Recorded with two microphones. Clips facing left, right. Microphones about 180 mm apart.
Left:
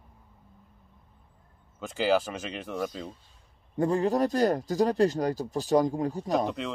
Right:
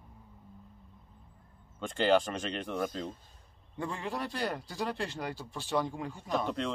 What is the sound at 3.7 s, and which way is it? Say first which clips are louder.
A man's voice: left 12 dB; 40° left (ahead or behind).